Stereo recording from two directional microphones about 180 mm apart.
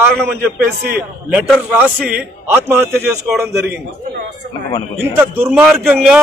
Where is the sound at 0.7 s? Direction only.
60° right (ahead or behind).